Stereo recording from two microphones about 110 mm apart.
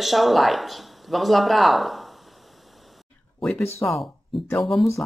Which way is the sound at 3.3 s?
5° left (ahead or behind).